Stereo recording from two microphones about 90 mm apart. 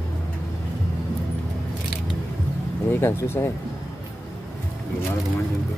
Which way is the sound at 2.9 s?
30° left (ahead or behind).